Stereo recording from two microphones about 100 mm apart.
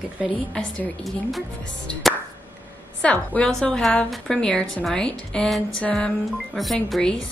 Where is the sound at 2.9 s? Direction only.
15° left (ahead or behind).